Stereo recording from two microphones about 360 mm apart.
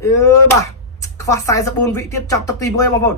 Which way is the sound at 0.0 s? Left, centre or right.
Centre.